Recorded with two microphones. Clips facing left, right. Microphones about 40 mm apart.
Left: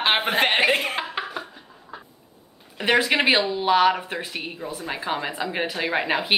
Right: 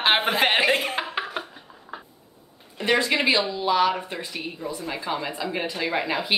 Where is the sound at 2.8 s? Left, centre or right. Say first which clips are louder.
Left 2 dB; left.